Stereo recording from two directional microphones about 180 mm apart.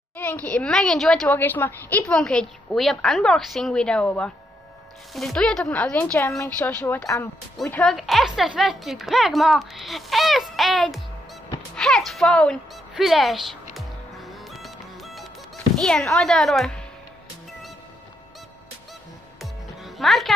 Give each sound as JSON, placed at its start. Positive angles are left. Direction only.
{"t": 0.2, "sound": "a woman's voice", "side_deg": 10}
{"t": 13.7, "sound": "music", "side_deg": 0}
{"t": 15.8, "sound": "a woman's voice", "side_deg": 5}
{"t": 19.4, "sound": "music", "side_deg": 0}